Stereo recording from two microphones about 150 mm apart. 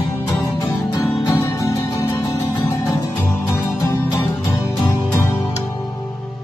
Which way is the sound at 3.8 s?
15° left (ahead or behind).